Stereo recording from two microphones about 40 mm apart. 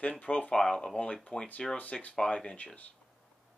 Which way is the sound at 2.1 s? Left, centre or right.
Left.